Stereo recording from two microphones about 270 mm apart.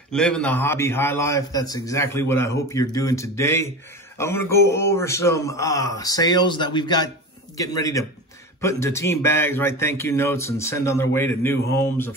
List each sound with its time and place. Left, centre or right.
0.1 s a man's voice: centre